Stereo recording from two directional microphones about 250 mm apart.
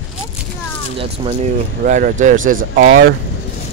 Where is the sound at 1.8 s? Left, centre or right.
Right.